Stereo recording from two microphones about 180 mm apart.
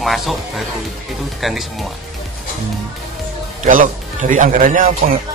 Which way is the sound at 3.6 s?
45° right (ahead or behind).